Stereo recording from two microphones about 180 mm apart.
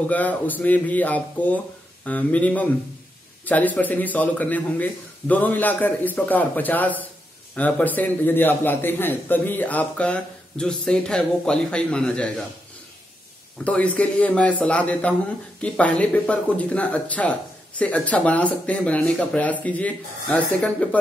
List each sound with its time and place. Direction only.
0.1 s speech: 10° left (ahead or behind)
13.7 s speech: 5° left (ahead or behind)